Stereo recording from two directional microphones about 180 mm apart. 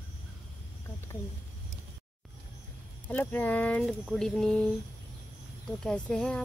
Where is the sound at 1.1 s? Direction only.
15° left (ahead or behind).